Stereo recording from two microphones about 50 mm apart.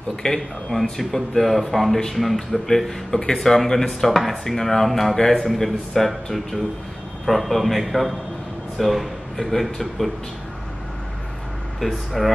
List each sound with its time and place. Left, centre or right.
0.1 s a man's voice: centre
11.8 s speech: centre